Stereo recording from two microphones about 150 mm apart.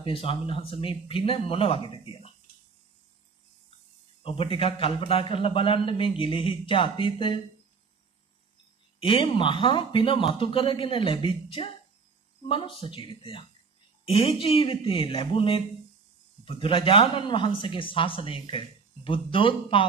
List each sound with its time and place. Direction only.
0.0 s a man's voice: 40° left (ahead or behind)
4.2 s a man's voice: 40° left (ahead or behind)
9.0 s a man's voice: 35° left (ahead or behind)